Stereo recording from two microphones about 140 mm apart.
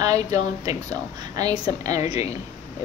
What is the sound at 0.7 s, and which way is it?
A woman's voice, 25° right (ahead or behind).